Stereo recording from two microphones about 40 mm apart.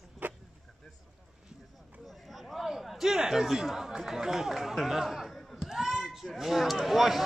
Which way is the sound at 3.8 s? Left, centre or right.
Centre.